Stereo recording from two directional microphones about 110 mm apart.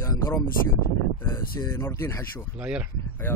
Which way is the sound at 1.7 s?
25° left (ahead or behind).